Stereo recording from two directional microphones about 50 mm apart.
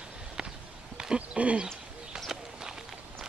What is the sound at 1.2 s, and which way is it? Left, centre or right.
Speech, right.